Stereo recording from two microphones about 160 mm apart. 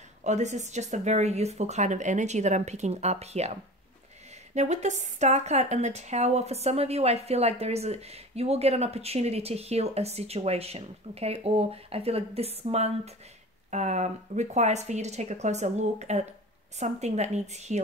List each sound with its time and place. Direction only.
0.2 s speech: 45° right (ahead or behind)
4.6 s speech: 45° right (ahead or behind)